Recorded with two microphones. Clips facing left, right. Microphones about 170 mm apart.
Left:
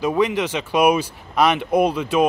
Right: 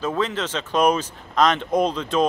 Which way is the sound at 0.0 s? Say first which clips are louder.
Left 5 dB; 15° left (ahead or behind).